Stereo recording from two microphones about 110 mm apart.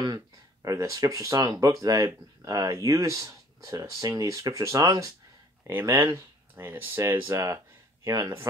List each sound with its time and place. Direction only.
0.0 s speech: 35° right (ahead or behind)
5.6 s speech: 20° right (ahead or behind)